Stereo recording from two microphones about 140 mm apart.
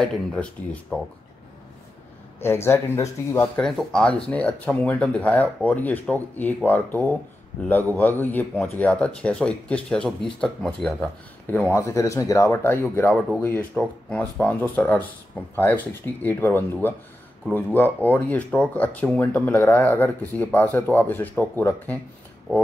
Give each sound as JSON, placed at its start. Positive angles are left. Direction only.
{"t": 0.0, "sound": "speech", "side_deg": 0}
{"t": 2.4, "sound": "speech", "side_deg": 15}
{"t": 3.6, "sound": "speech", "side_deg": 5}